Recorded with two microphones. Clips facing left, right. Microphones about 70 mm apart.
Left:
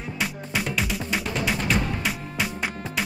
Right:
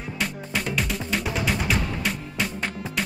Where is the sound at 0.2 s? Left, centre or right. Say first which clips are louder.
Even; centre.